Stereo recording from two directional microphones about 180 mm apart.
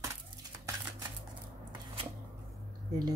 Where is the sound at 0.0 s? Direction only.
15° right (ahead or behind).